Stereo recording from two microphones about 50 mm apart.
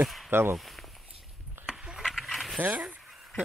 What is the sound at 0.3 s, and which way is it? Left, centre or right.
Speech, right.